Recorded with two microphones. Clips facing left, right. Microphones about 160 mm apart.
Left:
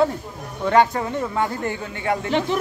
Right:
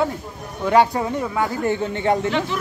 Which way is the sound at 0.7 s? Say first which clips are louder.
Right 1 dB; 15° right (ahead or behind).